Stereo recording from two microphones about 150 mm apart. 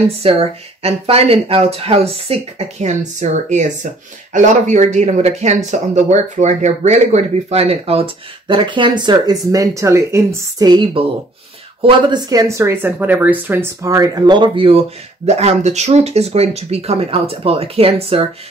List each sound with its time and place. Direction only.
0.2 s speech: 40° right (ahead or behind); by 10.8 s 25° right (ahead or behind)
11.8 s speech: 30° right (ahead or behind)